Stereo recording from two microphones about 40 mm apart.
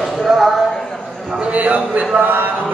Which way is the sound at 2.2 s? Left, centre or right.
Right.